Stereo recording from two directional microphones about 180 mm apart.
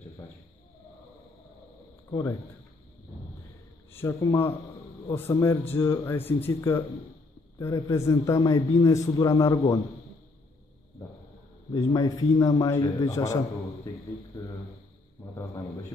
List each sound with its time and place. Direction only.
3.9 s a man's voice: 15° left (ahead or behind)
11.7 s a man's voice: 20° left (ahead or behind)